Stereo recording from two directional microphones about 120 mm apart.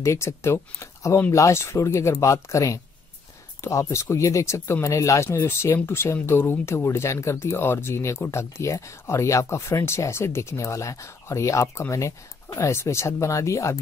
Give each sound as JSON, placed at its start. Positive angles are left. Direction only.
{"t": 0.0, "sound": "speech", "side_deg": 25}